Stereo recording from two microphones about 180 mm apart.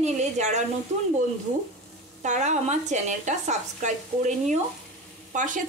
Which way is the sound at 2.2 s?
40° right (ahead or behind).